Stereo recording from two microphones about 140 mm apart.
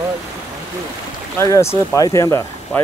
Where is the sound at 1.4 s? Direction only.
20° left (ahead or behind).